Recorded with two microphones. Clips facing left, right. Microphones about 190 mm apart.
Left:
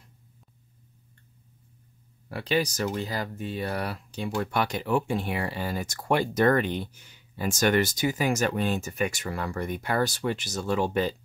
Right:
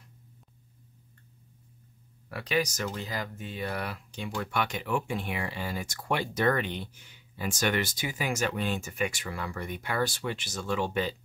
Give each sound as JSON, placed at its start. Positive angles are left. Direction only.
{"t": 2.2, "sound": "speech", "side_deg": 30}